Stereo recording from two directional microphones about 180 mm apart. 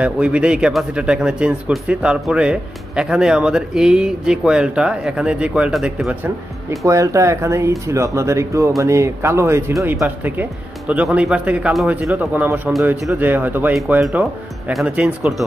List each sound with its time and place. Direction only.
0.0 s speech: 5° right (ahead or behind)
6.8 s speech: 15° right (ahead or behind)